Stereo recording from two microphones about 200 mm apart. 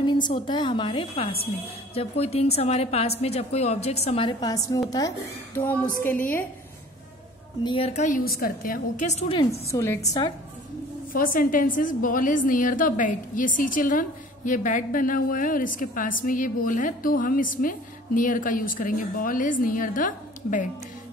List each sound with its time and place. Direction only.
0.0 s a sound: 25° left (ahead or behind)
0.5 s a woman's voice: 20° left (ahead or behind)
6.0 s a woman's voice: 10° left (ahead or behind)
7.6 s a woman's voice: 30° left (ahead or behind)
9.7 s a woman's voice: 15° left (ahead or behind)
11.1 s a woman's voice: 45° left (ahead or behind)